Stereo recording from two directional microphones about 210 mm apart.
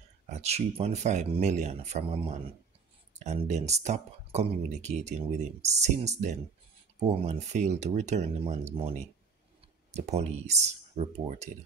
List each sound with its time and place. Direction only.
0.3 s speech: 30° right (ahead or behind)